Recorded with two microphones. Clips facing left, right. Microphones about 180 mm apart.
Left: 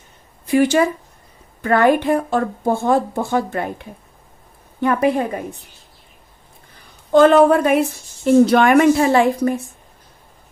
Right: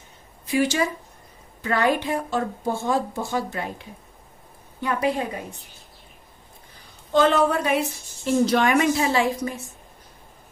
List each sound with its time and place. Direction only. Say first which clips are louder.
0.5 s a woman's voice: left 7 dB; 55° left (ahead or behind)
4.8 s a woman's voice: left 7 dB; 55° left (ahead or behind)
7.1 s a woman's voice: left 8 dB; 55° left (ahead or behind)